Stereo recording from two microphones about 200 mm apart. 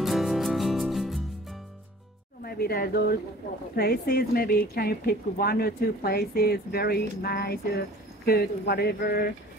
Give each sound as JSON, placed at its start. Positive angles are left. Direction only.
{"t": 0.0, "sound": "music", "side_deg": 0}
{"t": 2.4, "sound": "speech", "side_deg": 50}